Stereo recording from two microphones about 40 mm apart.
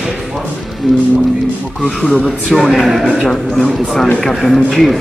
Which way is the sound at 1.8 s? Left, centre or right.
Left.